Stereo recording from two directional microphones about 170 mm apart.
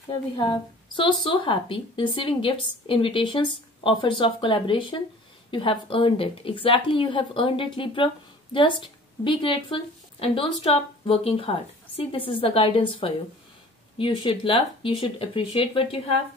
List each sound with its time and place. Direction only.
0.1 s a woman's voice: 25° left (ahead or behind)